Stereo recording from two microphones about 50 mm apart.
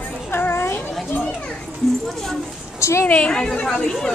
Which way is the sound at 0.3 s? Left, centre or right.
Left.